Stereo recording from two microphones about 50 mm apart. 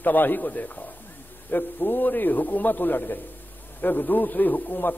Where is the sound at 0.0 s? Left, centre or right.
Left.